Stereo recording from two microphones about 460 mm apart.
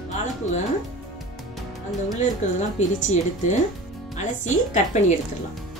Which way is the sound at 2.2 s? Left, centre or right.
Centre.